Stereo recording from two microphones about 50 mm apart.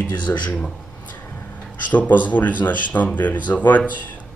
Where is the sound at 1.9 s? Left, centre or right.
Left.